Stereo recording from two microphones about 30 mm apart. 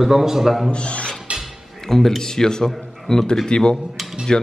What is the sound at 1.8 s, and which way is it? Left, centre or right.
A woman's voice, centre.